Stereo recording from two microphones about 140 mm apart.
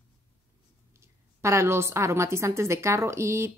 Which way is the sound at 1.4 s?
20° right (ahead or behind).